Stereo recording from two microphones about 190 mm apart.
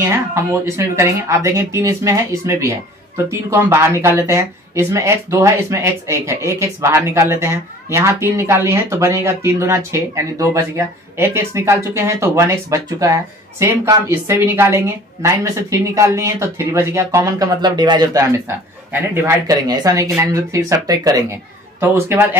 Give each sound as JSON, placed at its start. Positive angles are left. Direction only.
{"t": 0.0, "sound": "speech", "side_deg": -15}
{"t": 18.9, "sound": "speech", "side_deg": -10}